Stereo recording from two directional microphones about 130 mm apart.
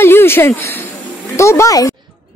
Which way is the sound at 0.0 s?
20° left (ahead or behind).